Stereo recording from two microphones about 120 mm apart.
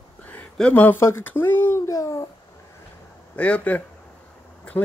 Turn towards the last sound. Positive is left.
turn(degrees=10)  # may be behind; listen again after turning